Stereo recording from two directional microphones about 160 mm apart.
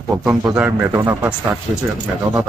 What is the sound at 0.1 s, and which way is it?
Speech, centre (ahead or behind).